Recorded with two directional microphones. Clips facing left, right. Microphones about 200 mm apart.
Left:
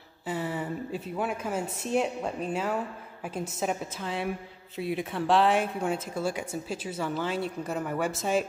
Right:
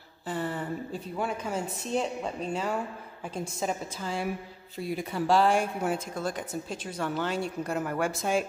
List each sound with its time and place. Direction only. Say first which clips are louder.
0.3 s a woman's voice: even; 5° left (ahead or behind)